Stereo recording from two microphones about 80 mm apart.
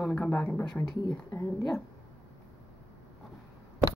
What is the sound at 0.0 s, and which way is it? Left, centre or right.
Speech, centre.